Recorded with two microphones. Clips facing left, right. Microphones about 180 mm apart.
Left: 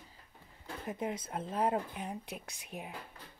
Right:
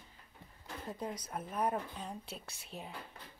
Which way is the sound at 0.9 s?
25° left (ahead or behind).